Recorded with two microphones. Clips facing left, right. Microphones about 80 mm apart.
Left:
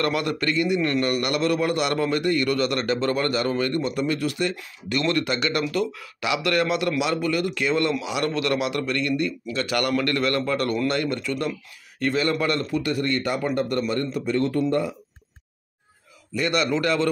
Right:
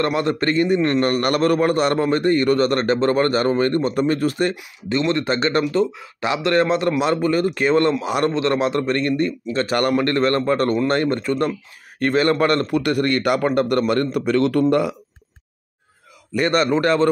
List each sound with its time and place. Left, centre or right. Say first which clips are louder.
0.0 s a man's voice: right 4 dB; right
0.5 s a man's voice: right 4 dB; right
4.8 s a man's voice: right 4 dB; right
8.3 s a man's voice: right 3 dB; right
16.3 s a man's voice: right 5 dB; right